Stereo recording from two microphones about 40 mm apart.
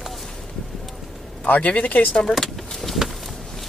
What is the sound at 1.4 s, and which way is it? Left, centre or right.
Speech, left.